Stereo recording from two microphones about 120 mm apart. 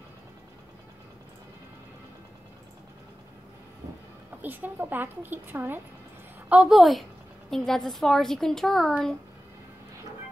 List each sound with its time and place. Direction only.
4.4 s a woman's voice: 15° right (ahead or behind)
6.5 s a woman's voice: 5° right (ahead or behind)